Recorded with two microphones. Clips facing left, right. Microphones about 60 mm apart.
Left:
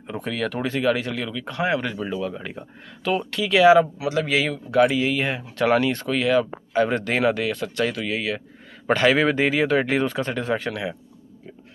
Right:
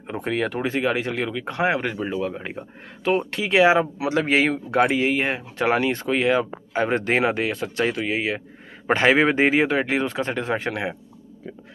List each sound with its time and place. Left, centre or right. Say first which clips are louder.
0.0 s speech: right 2 dB; right
4.0 s speech: right 2 dB; right
9.7 s speech: left 2 dB; centre; by 11.0 s right